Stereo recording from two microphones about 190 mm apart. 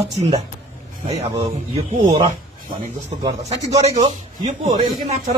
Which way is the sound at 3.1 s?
30° right (ahead or behind).